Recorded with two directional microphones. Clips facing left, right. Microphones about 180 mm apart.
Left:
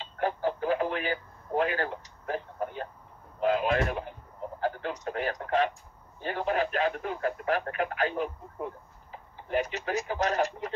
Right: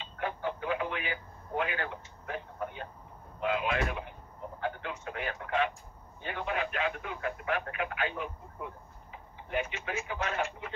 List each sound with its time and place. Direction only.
0.0 s radio: 35° left (ahead or behind)
3.3 s speech: 40° left (ahead or behind)